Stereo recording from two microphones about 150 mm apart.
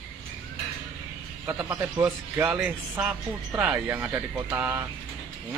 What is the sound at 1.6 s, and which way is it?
Speech, 20° right (ahead or behind).